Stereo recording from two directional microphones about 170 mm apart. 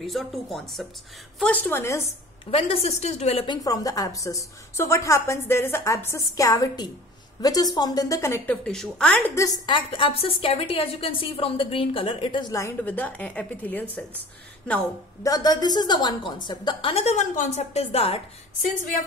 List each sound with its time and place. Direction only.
0.0 s a woman's voice: centre (ahead or behind)
2.0 s a woman's voice: 35° left (ahead or behind)
3.4 s a woman's voice: 20° left (ahead or behind)
8.6 s speech: 5° left (ahead or behind)
9.3 s a woman's voice: 20° left (ahead or behind)
9.8 s a woman's voice: 30° left (ahead or behind); by 13.8 s 10° left (ahead or behind)
15.2 s a woman's voice: 20° left (ahead or behind)